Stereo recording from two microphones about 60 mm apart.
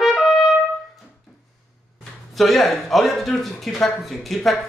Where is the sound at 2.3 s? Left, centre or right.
Centre.